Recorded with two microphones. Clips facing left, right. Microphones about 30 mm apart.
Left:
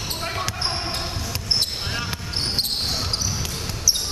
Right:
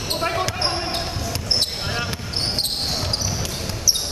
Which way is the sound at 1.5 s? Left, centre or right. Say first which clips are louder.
Right 2 dB; centre.